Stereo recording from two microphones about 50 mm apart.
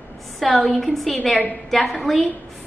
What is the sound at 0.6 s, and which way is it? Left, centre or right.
A woman's voice, centre.